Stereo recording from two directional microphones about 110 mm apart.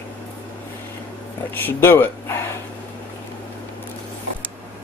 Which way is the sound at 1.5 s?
15° left (ahead or behind).